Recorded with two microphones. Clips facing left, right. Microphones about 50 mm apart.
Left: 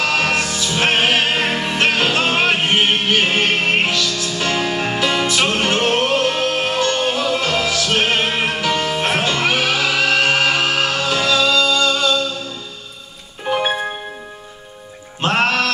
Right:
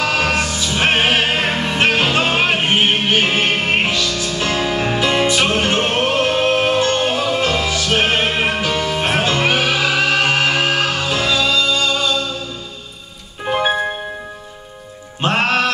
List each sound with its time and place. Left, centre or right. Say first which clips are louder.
0.0 s music: even; centre
1.5 s music: right 1 dB; centre
1.8 s music: right 1 dB; centre
9.3 s music: right 1 dB; right
13.5 s music: right 2 dB; centre
15.2 s music: right 1 dB; centre